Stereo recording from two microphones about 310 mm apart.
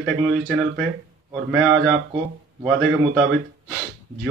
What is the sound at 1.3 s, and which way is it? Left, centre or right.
Speech, centre.